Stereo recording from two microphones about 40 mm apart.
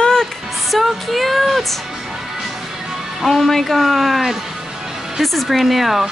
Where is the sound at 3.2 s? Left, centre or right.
Centre.